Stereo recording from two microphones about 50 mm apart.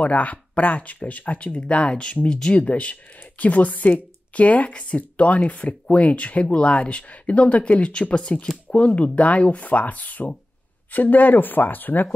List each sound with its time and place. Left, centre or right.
0.0 s speech: left